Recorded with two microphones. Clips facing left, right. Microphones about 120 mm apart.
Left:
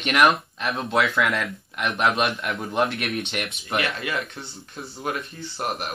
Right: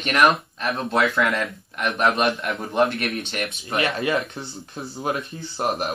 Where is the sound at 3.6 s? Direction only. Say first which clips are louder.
Right 4 dB; 25° right (ahead or behind).